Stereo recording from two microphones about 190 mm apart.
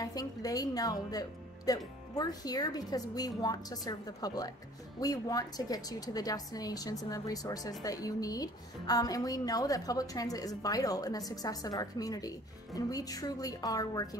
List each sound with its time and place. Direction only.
0.0 s a woman's voice: 20° left (ahead or behind)